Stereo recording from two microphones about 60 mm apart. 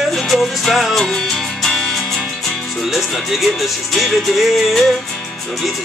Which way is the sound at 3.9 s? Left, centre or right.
Centre.